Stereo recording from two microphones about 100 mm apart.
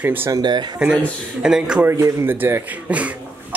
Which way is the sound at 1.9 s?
30° right (ahead or behind).